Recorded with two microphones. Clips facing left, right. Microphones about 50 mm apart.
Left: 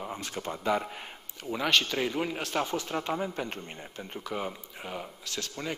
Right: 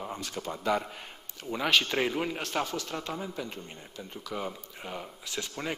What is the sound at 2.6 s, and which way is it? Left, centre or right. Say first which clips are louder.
Speech: left 3 dB; left.